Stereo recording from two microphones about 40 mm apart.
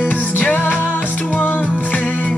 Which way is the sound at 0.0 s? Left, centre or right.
Left.